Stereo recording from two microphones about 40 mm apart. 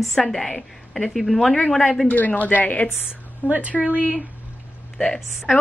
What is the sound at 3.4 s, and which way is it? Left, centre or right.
Speech, right.